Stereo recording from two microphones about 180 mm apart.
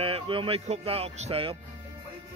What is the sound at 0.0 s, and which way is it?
Speech, 30° right (ahead or behind).